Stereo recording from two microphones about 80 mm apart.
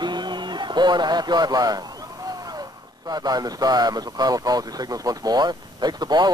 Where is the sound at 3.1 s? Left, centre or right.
Right.